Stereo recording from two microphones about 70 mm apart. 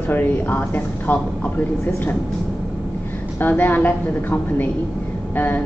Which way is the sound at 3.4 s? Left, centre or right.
Left.